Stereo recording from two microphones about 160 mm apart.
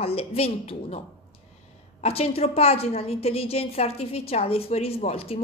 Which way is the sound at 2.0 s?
40° left (ahead or behind).